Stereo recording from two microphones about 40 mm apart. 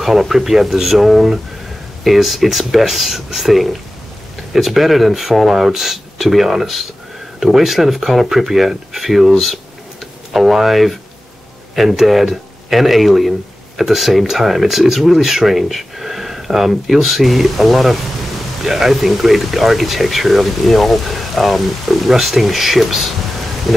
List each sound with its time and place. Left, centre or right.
0.0 s speech: centre